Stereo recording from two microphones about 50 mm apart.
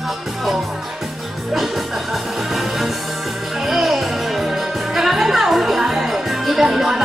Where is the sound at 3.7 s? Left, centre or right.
Centre.